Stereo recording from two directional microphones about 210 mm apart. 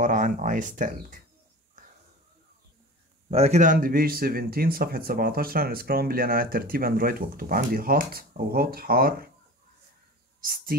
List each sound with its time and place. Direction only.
0.0 s speech: 35° right (ahead or behind)
1.8 s wheeze: 40° right (ahead or behind)
3.3 s speech: 30° right (ahead or behind)
10.4 s speech: 45° right (ahead or behind)